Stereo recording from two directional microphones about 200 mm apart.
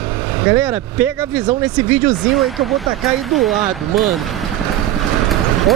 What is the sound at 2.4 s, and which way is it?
Speech, centre (ahead or behind).